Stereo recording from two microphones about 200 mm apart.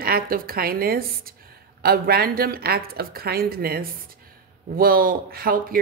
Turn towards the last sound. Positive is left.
turn(degrees=-45)  # may be behind; listen again after turning